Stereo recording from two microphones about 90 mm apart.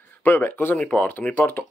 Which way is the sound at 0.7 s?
15° left (ahead or behind).